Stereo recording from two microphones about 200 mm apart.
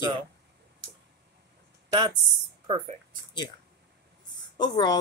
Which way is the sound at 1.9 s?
20° right (ahead or behind).